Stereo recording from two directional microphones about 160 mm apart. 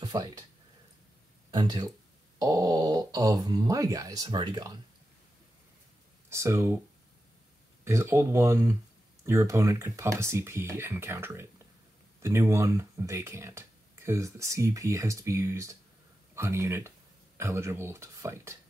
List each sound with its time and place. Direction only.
0.0 s speech: 25° right (ahead or behind)
1.5 s speech: 25° right (ahead or behind)
6.3 s speech: 15° right (ahead or behind)
7.8 s speech: 15° right (ahead or behind)